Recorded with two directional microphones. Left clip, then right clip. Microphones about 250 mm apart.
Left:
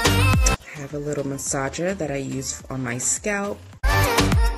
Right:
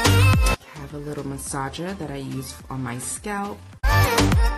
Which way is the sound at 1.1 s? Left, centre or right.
Centre.